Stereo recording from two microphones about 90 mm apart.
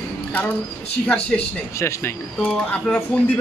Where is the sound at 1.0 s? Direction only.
15° left (ahead or behind).